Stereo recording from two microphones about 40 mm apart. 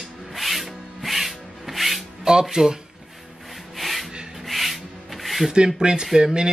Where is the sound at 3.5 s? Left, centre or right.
Centre.